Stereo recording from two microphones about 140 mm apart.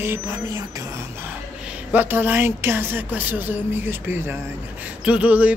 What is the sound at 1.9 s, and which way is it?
Speech, 15° right (ahead or behind).